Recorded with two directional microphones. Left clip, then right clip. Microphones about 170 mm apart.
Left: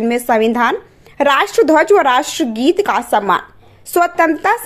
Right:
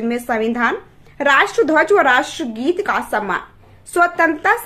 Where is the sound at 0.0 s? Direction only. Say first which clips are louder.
Left 6 dB; 35° left (ahead or behind).